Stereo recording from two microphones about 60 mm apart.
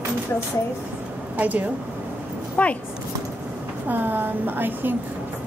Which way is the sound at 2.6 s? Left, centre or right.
Left.